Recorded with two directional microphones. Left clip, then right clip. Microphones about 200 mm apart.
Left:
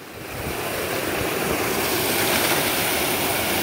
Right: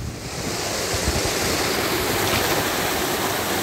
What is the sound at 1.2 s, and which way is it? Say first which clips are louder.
Vehicle: right 2 dB; 45° left (ahead or behind).